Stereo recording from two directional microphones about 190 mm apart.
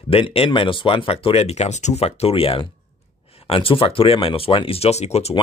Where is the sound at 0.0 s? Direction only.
30° left (ahead or behind).